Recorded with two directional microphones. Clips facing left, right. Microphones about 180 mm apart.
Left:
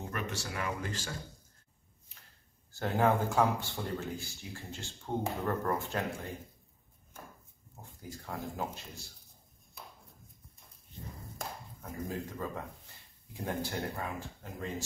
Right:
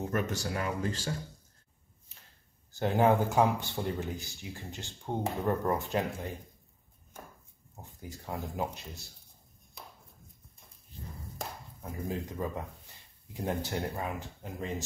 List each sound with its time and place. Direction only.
0.1 s speech: 40° right (ahead or behind)
2.7 s speech: 20° right (ahead or behind)
7.7 s speech: 20° right (ahead or behind)
11.8 s speech: 15° right (ahead or behind)